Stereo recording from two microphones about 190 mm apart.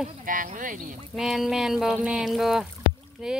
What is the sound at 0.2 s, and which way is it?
Speech, 45° right (ahead or behind).